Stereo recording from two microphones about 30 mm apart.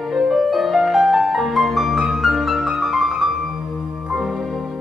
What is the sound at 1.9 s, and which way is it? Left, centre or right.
Music, centre.